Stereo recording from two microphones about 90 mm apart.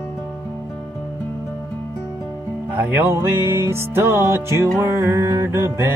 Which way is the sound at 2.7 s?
20° right (ahead or behind).